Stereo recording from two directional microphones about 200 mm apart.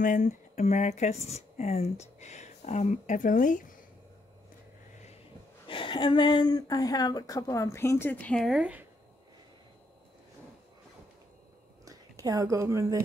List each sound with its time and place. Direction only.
0.0 s speech: 40° left (ahead or behind)
5.7 s speech: 25° left (ahead or behind); by 8.8 s 5° right (ahead or behind)
11.8 s speech: 15° right (ahead or behind)